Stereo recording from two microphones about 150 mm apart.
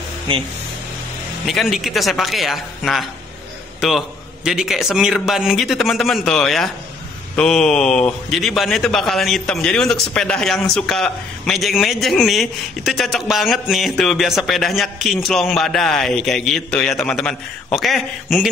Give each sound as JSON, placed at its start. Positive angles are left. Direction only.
{"t": 1.4, "sound": "a man's voice", "side_deg": 0}
{"t": 4.5, "sound": "a man's voice", "side_deg": 0}